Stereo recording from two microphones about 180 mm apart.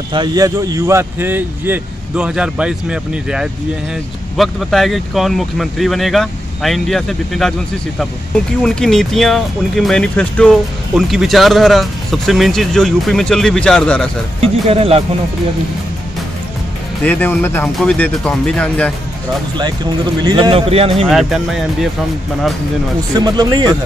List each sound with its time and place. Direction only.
0.1 s speech: 25° right (ahead or behind); by 7.5 s centre (ahead or behind)
8.6 s speech: 5° left (ahead or behind)
14.4 s speech: 35° right (ahead or behind)
17.0 s speech: 10° left (ahead or behind)
20.2 s speech: 25° right (ahead or behind)
21.1 s speech: centre (ahead or behind)
23.1 s speech: 20° right (ahead or behind)